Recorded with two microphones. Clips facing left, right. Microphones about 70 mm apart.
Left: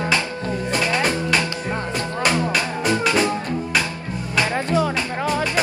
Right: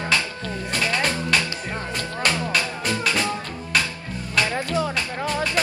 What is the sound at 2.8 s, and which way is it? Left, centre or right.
Music, left.